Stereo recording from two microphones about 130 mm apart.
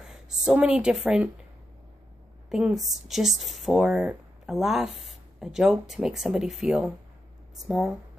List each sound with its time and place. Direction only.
0.1 s a woman's voice: 5° right (ahead or behind)
2.5 s speech: centre (ahead or behind)